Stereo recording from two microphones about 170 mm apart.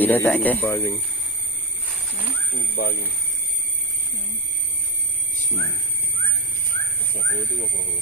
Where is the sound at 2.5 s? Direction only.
60° left (ahead or behind).